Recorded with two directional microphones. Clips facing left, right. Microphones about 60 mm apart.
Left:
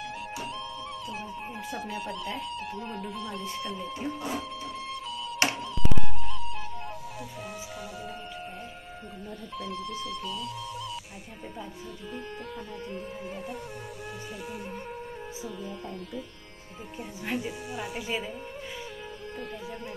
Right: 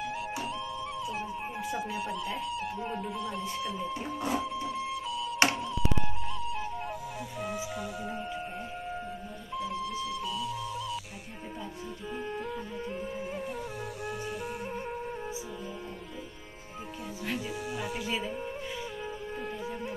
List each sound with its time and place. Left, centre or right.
1.9 s speech: centre
6.2 s music: centre
9.6 s speech: centre
12.9 s speech: centre
17.2 s speech: centre
17.7 s speech: centre